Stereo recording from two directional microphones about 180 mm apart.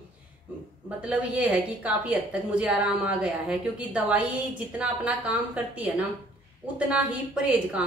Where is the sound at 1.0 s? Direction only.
5° right (ahead or behind).